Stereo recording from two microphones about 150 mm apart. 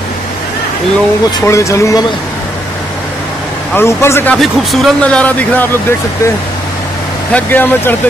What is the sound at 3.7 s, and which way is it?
Speech, 15° left (ahead or behind).